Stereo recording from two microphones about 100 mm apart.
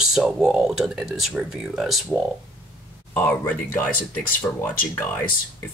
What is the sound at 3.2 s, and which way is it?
Speech, 15° left (ahead or behind).